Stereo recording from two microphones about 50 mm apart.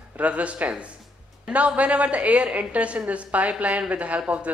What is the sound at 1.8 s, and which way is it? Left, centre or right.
A woman's voice, right.